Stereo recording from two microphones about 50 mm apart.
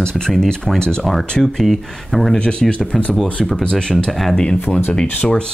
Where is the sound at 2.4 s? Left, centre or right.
Centre.